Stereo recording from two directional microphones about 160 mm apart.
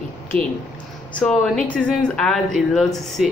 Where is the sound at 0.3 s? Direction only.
35° right (ahead or behind).